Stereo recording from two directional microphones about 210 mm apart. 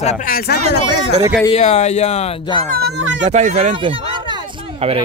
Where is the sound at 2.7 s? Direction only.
55° right (ahead or behind).